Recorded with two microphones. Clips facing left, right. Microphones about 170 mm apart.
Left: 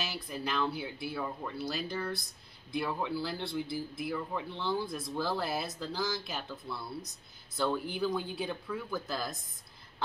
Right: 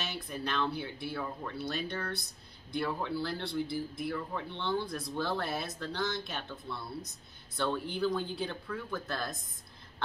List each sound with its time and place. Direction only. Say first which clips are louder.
0.0 s speech: even; centre (ahead or behind)